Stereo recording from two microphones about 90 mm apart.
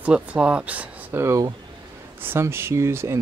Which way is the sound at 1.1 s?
30° right (ahead or behind).